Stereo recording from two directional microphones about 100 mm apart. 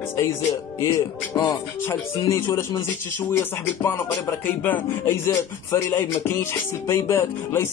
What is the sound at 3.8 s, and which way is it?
Music, 20° left (ahead or behind).